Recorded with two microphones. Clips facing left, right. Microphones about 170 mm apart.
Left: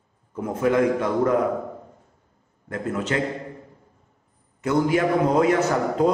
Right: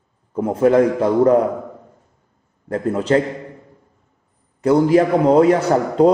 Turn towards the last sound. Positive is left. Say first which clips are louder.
# right 6 dB
turn(degrees=-35)  # may be behind; listen again after turning